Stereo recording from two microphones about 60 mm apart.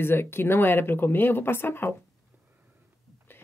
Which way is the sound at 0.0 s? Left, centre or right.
Left.